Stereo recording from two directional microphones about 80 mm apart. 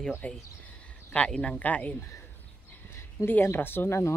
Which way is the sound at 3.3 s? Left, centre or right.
Left.